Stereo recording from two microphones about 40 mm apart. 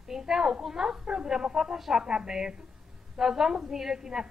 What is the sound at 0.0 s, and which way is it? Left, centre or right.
A woman's voice, centre.